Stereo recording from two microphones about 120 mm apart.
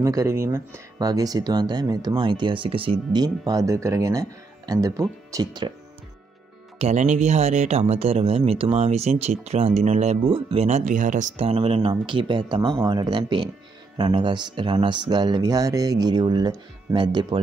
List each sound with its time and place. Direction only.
0.0 s speech: 30° right (ahead or behind)
6.8 s speech: 70° right (ahead or behind)
7.8 s speech: 55° right (ahead or behind)
8.7 s speech: 65° right (ahead or behind)
11.9 s speech: 40° right (ahead or behind)